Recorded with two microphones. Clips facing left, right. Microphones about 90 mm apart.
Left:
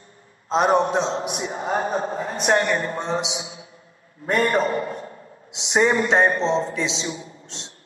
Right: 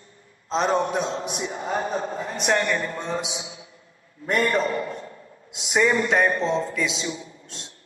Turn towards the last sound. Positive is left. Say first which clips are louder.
# left 2 dB
turn(degrees=25)  # may be behind; listen again after turning